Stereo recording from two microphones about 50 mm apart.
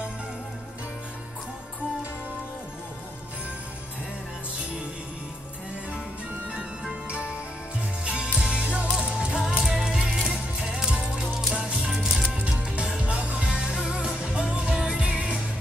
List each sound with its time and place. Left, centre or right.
6.5 s music: centre